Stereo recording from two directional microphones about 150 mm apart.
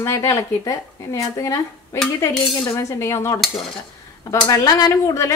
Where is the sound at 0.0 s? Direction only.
20° left (ahead or behind).